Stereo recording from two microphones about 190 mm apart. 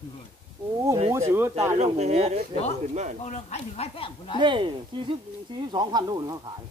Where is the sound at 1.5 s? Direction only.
35° right (ahead or behind).